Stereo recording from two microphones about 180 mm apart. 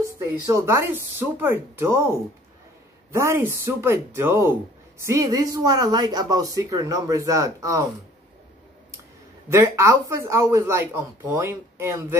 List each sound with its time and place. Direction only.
0.0 s speech: 15° right (ahead or behind)
3.2 s speech: 15° right (ahead or behind)
9.5 s speech: 15° right (ahead or behind)